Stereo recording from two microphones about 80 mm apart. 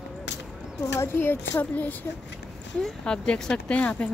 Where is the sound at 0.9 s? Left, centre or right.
Left.